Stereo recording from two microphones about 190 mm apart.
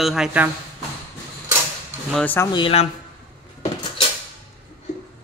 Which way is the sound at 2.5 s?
30° left (ahead or behind).